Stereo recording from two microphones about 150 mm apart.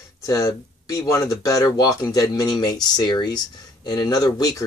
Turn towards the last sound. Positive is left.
turn(degrees=25)  # may be behind; listen again after turning